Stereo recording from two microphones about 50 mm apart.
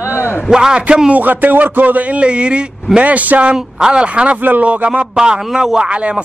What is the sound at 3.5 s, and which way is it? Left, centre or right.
Speech, centre.